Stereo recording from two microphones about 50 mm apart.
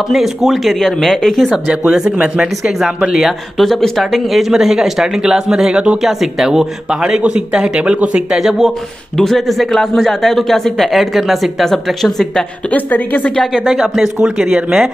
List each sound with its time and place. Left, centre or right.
0.1 s speech: centre
0.7 s speech: centre
1.5 s speech: right
3.3 s speech: centre; by 8.4 s right
8.4 s speech: centre
9.2 s speech: centre
11.0 s speech: centre
12.7 s a woman's voice: left
14.0 s speech: centre